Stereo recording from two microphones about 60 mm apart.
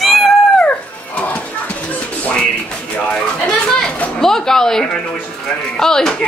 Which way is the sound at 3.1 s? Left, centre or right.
Centre.